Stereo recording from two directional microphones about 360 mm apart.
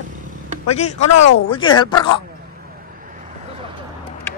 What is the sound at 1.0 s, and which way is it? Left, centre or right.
Speech, left.